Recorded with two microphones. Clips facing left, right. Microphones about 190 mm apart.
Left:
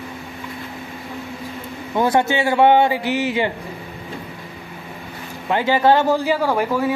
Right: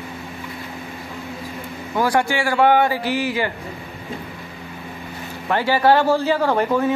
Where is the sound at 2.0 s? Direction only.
20° left (ahead or behind).